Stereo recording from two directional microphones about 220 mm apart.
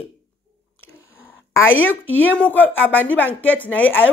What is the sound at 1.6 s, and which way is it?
Speech, 65° left (ahead or behind).